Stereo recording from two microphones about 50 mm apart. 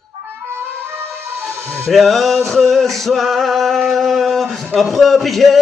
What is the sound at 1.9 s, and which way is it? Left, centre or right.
Male singing, centre.